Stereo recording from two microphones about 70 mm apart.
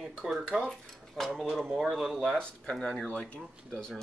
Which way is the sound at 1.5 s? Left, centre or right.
Centre.